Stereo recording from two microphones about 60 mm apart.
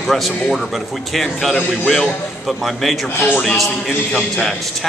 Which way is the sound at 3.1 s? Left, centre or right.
Left.